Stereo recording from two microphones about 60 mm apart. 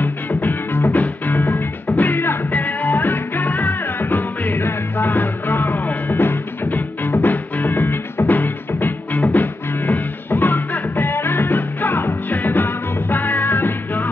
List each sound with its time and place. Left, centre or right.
0.0 s music: left